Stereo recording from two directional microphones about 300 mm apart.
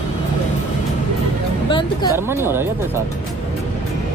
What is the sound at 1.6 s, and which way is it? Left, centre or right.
Speech, centre.